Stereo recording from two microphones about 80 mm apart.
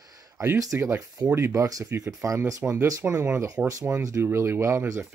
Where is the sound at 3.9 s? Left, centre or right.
Right.